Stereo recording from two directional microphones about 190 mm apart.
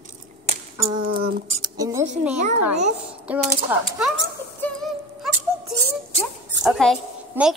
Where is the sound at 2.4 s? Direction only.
40° right (ahead or behind).